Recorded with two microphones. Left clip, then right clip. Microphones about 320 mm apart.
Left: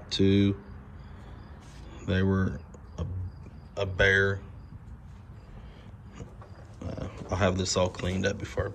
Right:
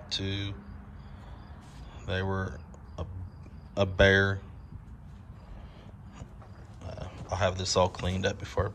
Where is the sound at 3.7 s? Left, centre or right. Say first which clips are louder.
Right 1 dB; centre.